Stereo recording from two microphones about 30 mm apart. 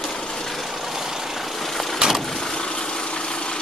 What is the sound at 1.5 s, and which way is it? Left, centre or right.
Vehicle, centre.